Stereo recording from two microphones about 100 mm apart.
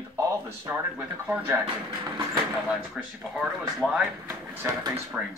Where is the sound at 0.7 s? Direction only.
10° right (ahead or behind).